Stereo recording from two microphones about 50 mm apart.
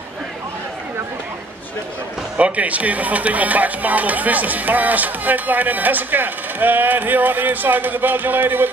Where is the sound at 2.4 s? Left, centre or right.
Right.